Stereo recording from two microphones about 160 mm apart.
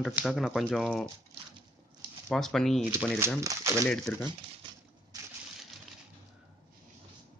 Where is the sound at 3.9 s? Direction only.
5° left (ahead or behind).